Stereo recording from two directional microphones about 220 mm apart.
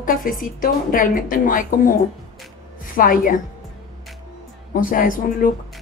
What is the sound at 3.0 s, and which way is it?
Speech, 40° left (ahead or behind).